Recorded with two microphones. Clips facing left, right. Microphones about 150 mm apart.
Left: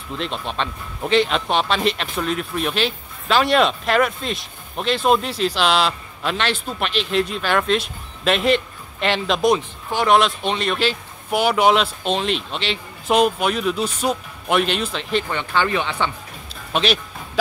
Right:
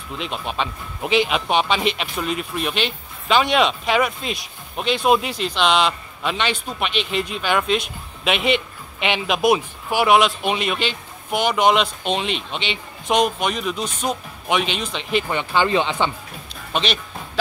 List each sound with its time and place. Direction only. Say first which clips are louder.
0.2 s speech: even; 5° right (ahead or behind)
15.2 s speech: right 1 dB; 15° right (ahead or behind)
16.7 s speech: left 3 dB; 5° left (ahead or behind)